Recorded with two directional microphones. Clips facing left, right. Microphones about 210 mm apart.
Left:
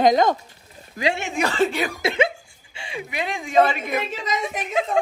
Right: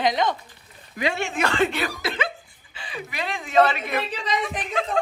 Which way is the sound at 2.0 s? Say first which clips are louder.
Left 6 dB; 25° left (ahead or behind).